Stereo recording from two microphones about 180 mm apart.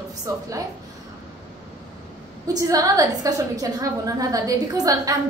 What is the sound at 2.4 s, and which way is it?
A woman's voice, 20° right (ahead or behind).